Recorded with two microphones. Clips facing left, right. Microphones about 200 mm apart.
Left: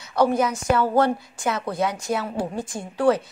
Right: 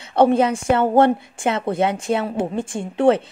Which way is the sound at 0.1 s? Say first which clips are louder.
Right 5 dB; 25° right (ahead or behind).